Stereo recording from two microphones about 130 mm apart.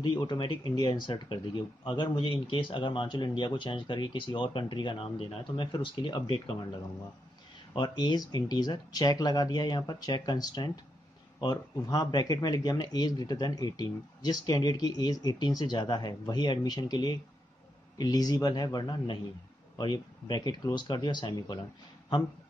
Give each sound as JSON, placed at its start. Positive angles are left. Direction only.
{"t": 0.0, "sound": "speech", "side_deg": 35}
{"t": 7.7, "sound": "speech", "side_deg": 35}